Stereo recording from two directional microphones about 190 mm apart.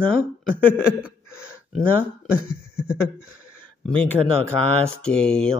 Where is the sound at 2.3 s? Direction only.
5° right (ahead or behind).